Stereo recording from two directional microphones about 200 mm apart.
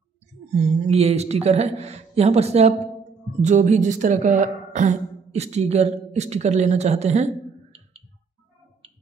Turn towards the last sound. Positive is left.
turn(degrees=-35)  # may be behind; listen again after turning